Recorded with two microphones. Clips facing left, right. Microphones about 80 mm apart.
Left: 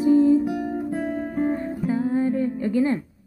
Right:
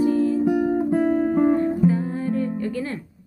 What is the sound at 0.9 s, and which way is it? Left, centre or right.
Music, right.